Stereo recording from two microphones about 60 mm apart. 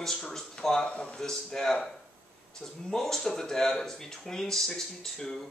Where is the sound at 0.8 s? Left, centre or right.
Centre.